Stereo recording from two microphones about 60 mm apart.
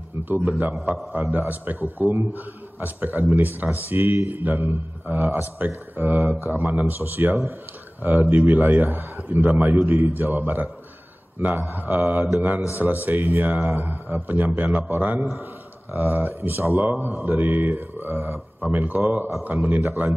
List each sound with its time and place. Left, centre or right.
0.2 s a man's voice: right
0.7 s a man's voice: centre
1.5 s a man's voice: right